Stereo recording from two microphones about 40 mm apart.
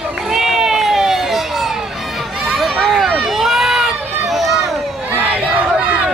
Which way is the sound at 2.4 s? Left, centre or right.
Centre.